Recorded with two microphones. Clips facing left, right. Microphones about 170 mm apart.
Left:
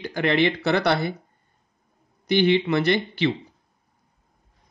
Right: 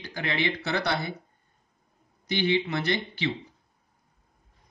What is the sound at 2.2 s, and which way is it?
Speech, 65° left (ahead or behind).